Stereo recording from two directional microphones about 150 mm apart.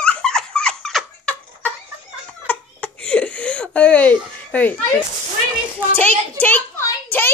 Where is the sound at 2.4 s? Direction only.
10° left (ahead or behind).